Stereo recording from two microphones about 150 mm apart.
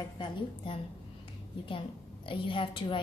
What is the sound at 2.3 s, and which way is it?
Speech, 35° left (ahead or behind).